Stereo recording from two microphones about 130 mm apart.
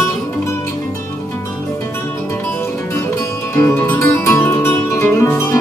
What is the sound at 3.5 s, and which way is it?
Music, 15° left (ahead or behind).